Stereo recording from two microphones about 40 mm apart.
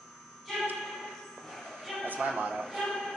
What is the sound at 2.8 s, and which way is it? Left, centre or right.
Speech, centre.